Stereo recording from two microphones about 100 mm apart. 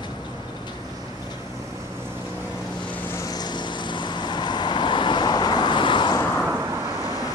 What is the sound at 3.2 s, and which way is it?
Vehicle, 40° left (ahead or behind).